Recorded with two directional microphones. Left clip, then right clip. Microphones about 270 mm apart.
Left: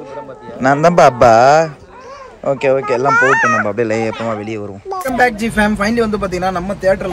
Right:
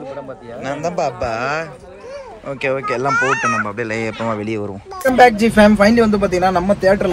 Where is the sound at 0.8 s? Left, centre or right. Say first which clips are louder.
Left 11 dB; left.